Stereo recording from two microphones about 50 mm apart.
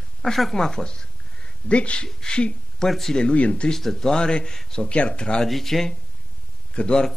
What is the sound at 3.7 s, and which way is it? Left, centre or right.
Speech, centre.